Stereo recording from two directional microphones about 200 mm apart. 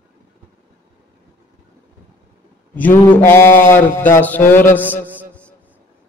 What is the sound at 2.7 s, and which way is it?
A man's voice, 10° left (ahead or behind).